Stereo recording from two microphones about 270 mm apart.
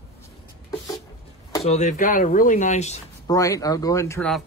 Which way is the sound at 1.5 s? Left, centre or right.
Left.